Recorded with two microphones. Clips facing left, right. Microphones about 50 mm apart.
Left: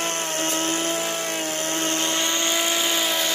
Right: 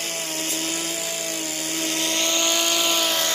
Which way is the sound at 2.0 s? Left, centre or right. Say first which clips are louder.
Even; left.